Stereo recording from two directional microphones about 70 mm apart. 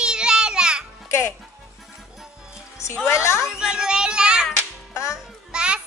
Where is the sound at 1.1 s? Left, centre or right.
Left.